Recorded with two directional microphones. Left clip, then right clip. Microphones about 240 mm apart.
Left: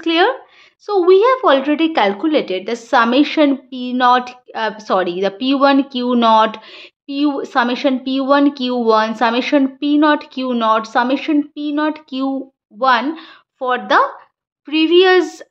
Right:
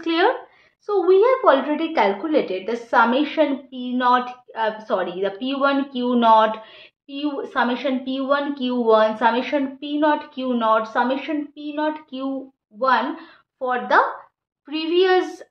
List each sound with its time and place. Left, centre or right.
0.0 s a woman's voice: left
13.6 s a woman's voice: left